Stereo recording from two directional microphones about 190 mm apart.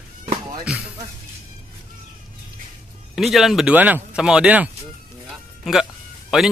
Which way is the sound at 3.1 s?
Centre (ahead or behind).